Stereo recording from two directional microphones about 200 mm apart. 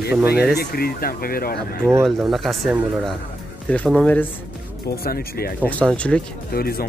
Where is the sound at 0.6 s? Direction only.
50° left (ahead or behind).